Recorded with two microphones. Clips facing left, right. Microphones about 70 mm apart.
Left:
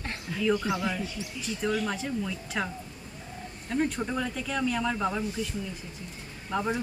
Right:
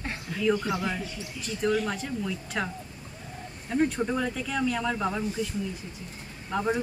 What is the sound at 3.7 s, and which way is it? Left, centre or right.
Speech, centre.